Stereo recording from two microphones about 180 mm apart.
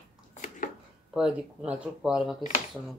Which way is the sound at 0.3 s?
45° left (ahead or behind).